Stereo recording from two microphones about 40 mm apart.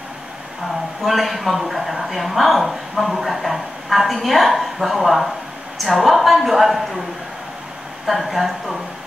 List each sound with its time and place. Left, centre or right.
1.0 s speech: centre
8.1 s speech: centre